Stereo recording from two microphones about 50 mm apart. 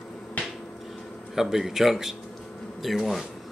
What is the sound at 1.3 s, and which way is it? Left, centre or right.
Speech, centre.